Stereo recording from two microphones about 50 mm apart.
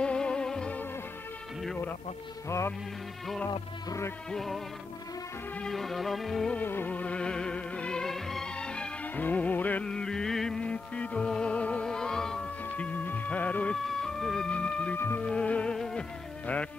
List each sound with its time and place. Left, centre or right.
0.0 s music: centre
4.3 s music: centre
5.7 s music: centre
6.6 s music: left
6.9 s music: left
8.0 s music: centre
8.5 s music: centre
9.0 s music: left
9.8 s music: centre
10.6 s music: left
12.7 s music: left
13.8 s a sound: centre
14.5 s music: left
15.7 s music: centre